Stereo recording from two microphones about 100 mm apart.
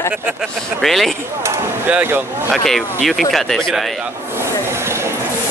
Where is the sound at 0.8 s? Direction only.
Centre (ahead or behind).